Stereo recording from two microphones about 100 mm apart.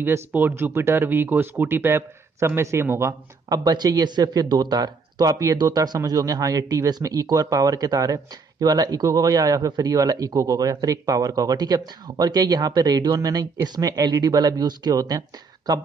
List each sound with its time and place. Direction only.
0.0 s speech: 20° right (ahead or behind)
3.4 s speech: 40° right (ahead or behind)